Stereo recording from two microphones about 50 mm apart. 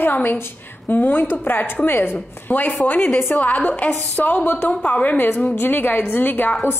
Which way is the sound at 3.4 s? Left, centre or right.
Left.